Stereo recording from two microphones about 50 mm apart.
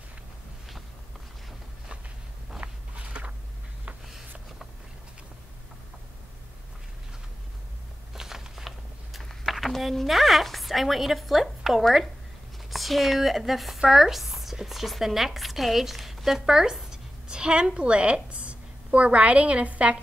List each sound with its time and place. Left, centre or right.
2.6 s walk: right
8.1 s a sound: centre
9.4 s a woman's voice: centre; by 20.0 s right